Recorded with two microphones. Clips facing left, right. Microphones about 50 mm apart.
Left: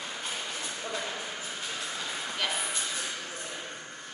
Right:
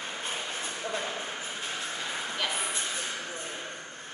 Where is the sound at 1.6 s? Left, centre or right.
Right.